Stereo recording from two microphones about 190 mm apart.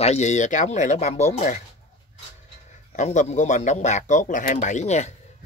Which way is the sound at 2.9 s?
35° left (ahead or behind).